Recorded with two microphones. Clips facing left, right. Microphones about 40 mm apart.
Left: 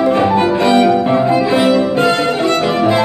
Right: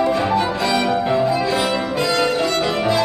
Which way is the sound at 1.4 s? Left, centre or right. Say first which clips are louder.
Left 7 dB; left.